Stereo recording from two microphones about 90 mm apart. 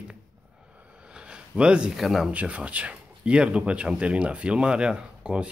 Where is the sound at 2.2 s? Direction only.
15° right (ahead or behind).